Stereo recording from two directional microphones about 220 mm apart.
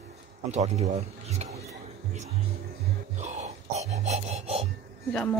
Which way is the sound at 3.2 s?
30° right (ahead or behind).